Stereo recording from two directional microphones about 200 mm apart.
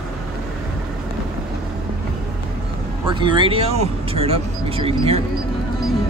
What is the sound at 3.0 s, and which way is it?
Speech, 25° right (ahead or behind).